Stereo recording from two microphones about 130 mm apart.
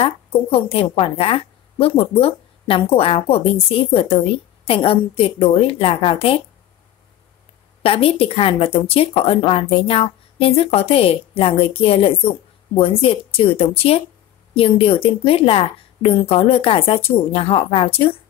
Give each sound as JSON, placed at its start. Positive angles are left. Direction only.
{"t": 0.0, "sound": "speech", "side_deg": 45}
{"t": 7.8, "sound": "speech", "side_deg": 50}